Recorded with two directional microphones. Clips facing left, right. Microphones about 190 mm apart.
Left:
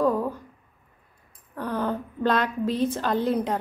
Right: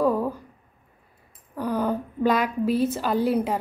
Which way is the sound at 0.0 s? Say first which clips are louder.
Right 1 dB; 10° right (ahead or behind).